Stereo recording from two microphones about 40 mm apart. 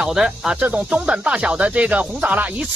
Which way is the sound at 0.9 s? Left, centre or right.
Right.